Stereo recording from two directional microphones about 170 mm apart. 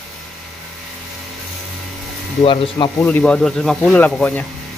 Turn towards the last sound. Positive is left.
turn(degrees=10)  # may be behind; listen again after turning